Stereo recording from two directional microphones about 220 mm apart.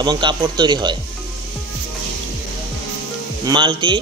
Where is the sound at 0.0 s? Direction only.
20° right (ahead or behind).